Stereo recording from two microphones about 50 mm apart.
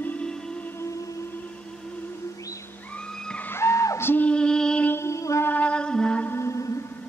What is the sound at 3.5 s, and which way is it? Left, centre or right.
Music, left.